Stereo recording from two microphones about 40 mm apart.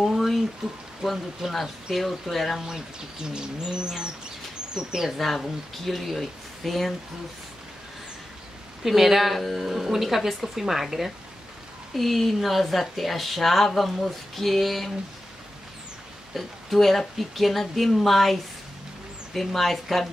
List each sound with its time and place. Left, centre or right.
0.0 s a sound: centre
1.0 s speech: centre
1.5 s speech: centre
3.7 s bird: right
4.7 s speech: centre
5.1 s speech: centre
8.8 s speech: centre
16.3 s speech: centre